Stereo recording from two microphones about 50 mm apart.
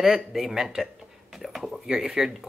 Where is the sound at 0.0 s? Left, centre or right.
Centre.